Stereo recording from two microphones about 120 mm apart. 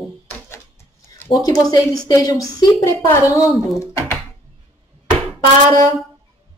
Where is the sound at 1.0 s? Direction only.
25° left (ahead or behind).